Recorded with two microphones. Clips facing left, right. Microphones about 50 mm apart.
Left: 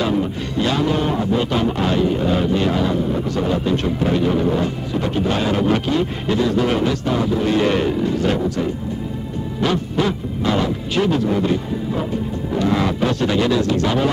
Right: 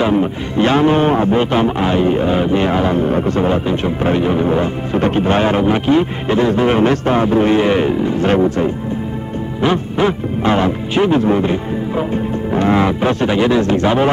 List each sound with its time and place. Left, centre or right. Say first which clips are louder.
0.0 s a man's voice: right 5 dB; right
7.6 s speech: right 4 dB; right
8.3 s a man's voice: right 6 dB; right
9.6 s a man's voice: right 4 dB; right